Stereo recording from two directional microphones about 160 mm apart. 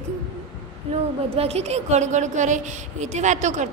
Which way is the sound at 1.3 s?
40° right (ahead or behind).